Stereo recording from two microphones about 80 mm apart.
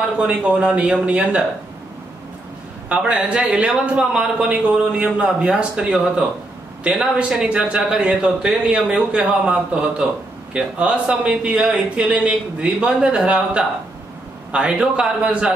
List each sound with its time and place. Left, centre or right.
0.3 s speech: centre
2.9 s speech: centre